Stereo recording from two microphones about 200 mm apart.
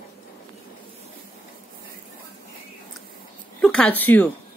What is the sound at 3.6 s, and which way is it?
Speech, 5° left (ahead or behind).